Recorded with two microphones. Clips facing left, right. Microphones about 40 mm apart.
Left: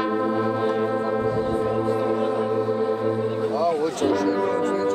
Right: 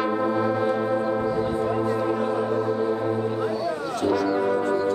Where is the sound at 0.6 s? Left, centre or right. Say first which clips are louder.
Left 1 dB; centre.